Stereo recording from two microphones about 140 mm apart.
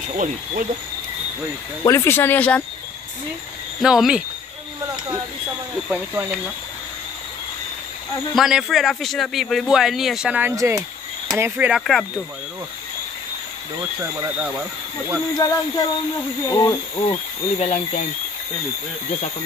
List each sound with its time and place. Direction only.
0.1 s speech: 65° right (ahead or behind)
1.9 s speech: 20° left (ahead or behind)
3.8 s a man's voice: 5° right (ahead or behind)
5.9 s speech: 10° right (ahead or behind)
8.4 s a man's voice: centre (ahead or behind)
10.5 s speech: 25° right (ahead or behind)
11.8 s a man's voice: centre (ahead or behind)
15.3 s speech: 30° left (ahead or behind)
16.9 s speech: 45° left (ahead or behind)